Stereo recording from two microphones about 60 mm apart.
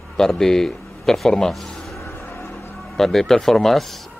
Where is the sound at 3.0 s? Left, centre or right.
Centre.